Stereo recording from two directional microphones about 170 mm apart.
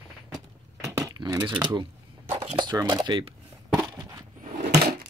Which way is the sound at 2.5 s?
25° right (ahead or behind).